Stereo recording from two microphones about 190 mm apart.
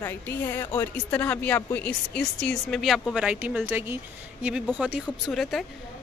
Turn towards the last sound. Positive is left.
turn(degrees=0)  # may be behind; listen again after turning